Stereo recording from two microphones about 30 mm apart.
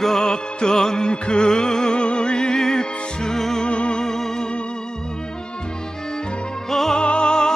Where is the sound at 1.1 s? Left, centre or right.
Left.